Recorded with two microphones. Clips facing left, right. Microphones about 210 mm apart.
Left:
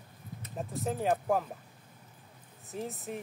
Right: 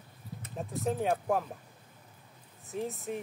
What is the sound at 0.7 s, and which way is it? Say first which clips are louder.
Speech: even; centre (ahead or behind).